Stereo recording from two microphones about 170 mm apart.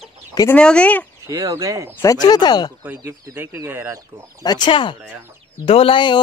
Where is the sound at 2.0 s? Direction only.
25° left (ahead or behind).